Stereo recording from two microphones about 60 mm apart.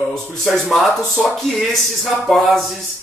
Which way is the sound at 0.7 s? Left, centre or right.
Centre.